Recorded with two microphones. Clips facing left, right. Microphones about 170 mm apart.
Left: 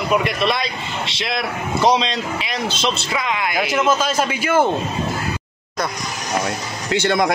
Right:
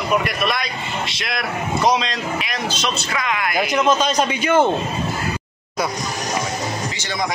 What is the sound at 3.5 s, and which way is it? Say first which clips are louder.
Speech: right 1 dB; 5° left (ahead or behind).